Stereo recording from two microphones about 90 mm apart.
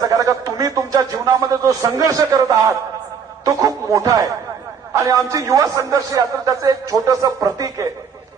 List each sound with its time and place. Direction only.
0.0 s a man's voice: 40° right (ahead or behind)